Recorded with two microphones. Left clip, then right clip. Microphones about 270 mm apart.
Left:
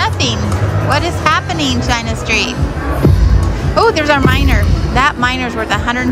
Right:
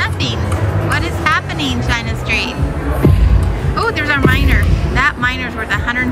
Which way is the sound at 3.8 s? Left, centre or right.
Centre.